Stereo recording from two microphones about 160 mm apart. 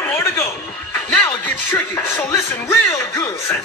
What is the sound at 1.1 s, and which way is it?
Speech, 15° left (ahead or behind).